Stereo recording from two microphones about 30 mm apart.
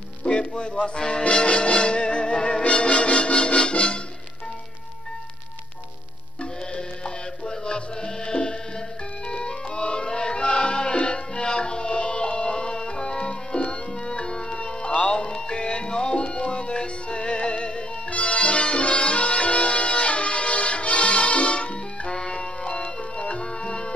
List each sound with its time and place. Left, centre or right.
0.2 s music: left
1.3 s music: left
7.4 s music: left
22.1 s music: left